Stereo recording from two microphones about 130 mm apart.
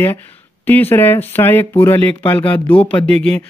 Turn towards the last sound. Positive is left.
turn(degrees=5)  # may be behind; listen again after turning